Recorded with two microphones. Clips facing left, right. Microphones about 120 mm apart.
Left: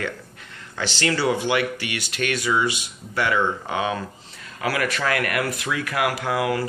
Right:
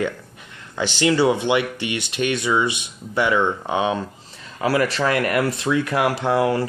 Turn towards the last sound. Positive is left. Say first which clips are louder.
# right 4 dB
turn(degrees=-30)  # may be behind; listen again after turning